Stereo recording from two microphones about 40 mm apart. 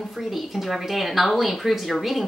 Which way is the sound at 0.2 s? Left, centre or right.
Centre.